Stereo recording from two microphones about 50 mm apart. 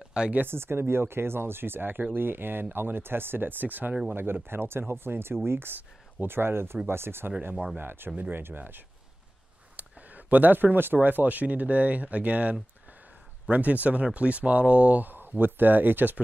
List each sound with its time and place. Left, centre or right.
0.2 s speech: centre
0.5 s speech: right
9.8 s speech: right